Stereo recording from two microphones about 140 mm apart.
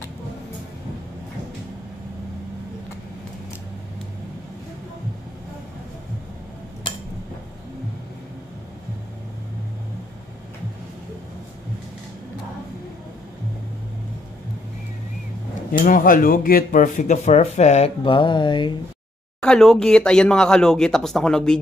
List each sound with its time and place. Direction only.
15.8 s speech: 80° left; by 18.7 s 35° left (ahead or behind)
19.4 s speech: 5° left (ahead or behind)